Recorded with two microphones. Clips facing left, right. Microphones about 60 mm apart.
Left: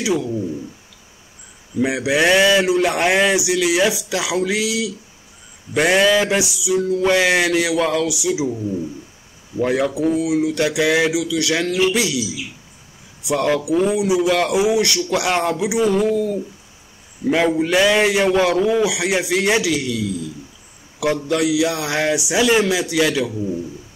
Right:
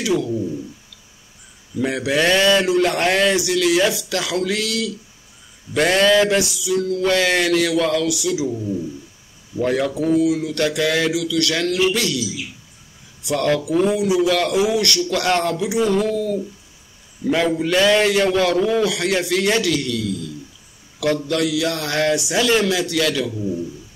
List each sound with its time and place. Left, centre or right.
0.0 s a man's voice: centre
1.8 s a man's voice: centre
9.6 s a man's voice: centre
17.2 s a man's voice: left
17.6 s a man's voice: centre